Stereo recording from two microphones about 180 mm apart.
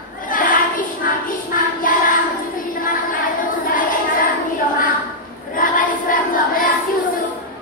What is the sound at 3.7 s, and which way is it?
Child singing, 50° left (ahead or behind).